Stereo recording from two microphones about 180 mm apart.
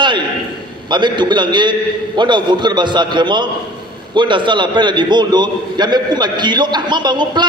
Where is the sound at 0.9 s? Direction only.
25° right (ahead or behind).